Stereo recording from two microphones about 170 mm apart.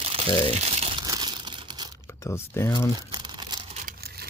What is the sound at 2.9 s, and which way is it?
Crumpling, 25° right (ahead or behind).